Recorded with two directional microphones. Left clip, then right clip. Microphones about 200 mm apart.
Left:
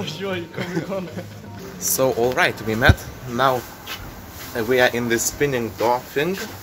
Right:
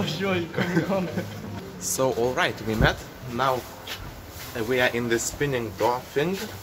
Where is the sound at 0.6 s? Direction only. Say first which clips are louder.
Right 2 dB; 40° left (ahead or behind).